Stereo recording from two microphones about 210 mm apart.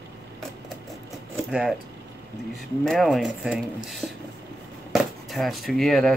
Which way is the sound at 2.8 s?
Centre (ahead or behind).